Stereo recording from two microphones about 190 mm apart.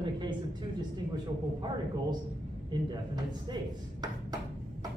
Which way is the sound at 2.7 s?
20° right (ahead or behind).